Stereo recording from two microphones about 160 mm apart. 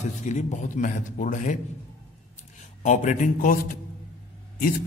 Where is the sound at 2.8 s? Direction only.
50° left (ahead or behind).